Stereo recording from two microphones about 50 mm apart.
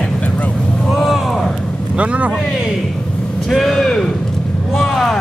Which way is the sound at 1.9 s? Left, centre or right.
Right.